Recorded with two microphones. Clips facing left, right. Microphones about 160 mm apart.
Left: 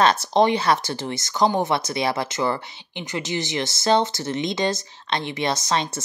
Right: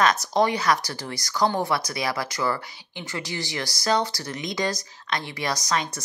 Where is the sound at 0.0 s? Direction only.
30° left (ahead or behind).